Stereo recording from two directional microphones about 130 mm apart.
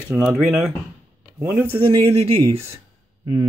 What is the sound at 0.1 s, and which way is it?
Speech, 10° right (ahead or behind).